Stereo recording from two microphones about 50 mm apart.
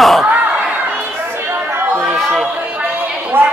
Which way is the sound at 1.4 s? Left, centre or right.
Right.